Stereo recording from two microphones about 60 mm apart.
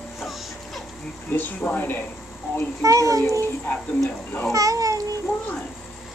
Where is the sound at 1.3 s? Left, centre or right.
Left.